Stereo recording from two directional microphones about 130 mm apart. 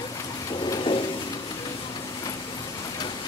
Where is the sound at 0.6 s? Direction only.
40° left (ahead or behind).